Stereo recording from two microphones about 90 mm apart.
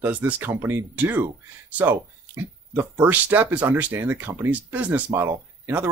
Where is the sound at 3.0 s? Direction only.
20° right (ahead or behind).